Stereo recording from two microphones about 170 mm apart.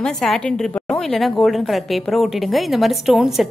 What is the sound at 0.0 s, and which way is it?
A woman's voice, 5° left (ahead or behind).